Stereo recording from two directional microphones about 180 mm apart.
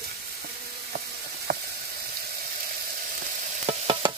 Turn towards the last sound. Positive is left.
turn(degrees=-30)  # may be behind; listen again after turning